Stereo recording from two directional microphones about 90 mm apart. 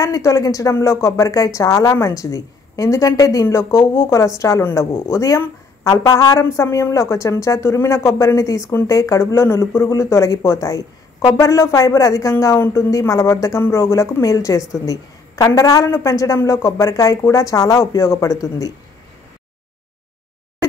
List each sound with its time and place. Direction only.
0.0 s speech: 35° left (ahead or behind)
3.4 s speech: 30° left (ahead or behind)